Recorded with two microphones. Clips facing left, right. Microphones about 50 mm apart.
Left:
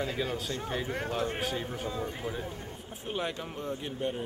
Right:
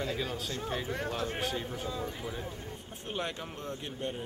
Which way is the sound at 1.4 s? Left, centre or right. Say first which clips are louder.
Left 1 dB; centre.